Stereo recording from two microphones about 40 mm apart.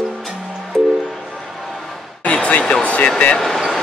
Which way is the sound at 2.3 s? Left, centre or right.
Left.